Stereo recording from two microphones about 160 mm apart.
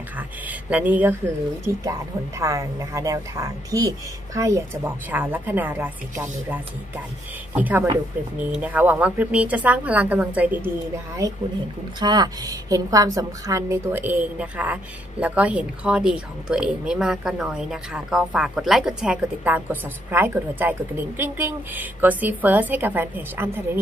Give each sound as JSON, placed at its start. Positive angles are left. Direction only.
{"t": 0.5, "sound": "a woman's voice", "side_deg": -10}
{"t": 12.0, "sound": "a woman's voice", "side_deg": -25}